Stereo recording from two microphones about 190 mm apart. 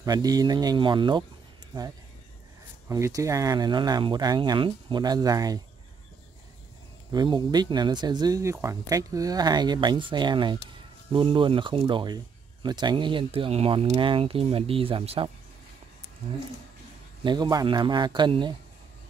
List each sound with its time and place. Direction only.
0.0 s speech: 20° right (ahead or behind)
2.9 s speech: 15° right (ahead or behind)
7.1 s speech: 25° right (ahead or behind)
17.2 s speech: 25° right (ahead or behind)